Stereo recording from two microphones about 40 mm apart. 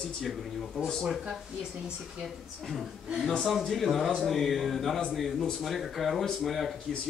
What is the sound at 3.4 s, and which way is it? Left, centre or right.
Speech, centre.